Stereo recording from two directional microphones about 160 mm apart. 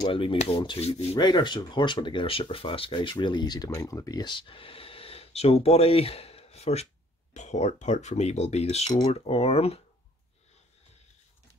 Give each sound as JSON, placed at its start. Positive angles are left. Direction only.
{"t": 0.0, "sound": "speech", "side_deg": 30}
{"t": 1.1, "sound": "speech", "side_deg": 25}